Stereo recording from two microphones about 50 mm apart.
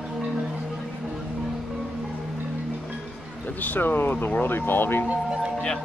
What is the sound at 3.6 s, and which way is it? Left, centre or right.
Speech, left.